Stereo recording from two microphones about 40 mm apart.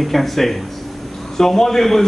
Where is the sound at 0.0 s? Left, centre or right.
Centre.